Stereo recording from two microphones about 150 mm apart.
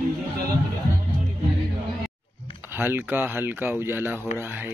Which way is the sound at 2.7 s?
15° right (ahead or behind).